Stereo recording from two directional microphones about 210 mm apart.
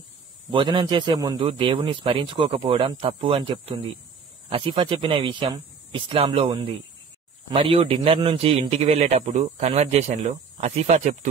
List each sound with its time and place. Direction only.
0.5 s a man's voice: 25° right (ahead or behind)